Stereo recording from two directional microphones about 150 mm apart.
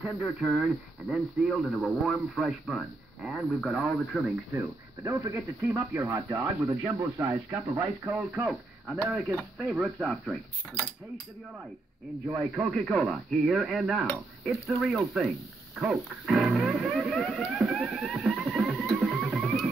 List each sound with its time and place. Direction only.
0.2 s speech: 5° right (ahead or behind)
5.0 s speech: 20° right (ahead or behind); by 10.3 s centre (ahead or behind)
12.5 s speech: 5° left (ahead or behind)
15.8 s music: centre (ahead or behind)